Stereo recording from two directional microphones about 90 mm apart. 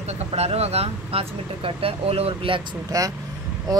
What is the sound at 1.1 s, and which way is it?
Speech, 90° right.